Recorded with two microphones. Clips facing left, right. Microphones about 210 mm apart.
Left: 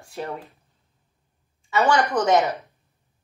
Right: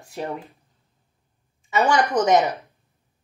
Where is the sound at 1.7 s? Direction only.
15° right (ahead or behind).